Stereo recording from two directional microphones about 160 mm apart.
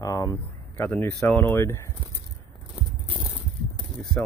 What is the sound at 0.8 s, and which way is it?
Speech, 10° left (ahead or behind).